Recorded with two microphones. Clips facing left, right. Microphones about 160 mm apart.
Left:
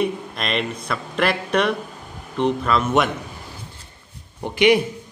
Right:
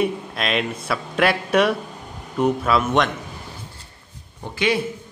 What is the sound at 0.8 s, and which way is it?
Speech, 5° right (ahead or behind).